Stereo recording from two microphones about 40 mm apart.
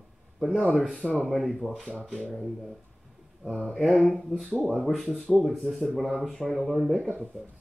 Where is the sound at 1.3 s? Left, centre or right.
Centre.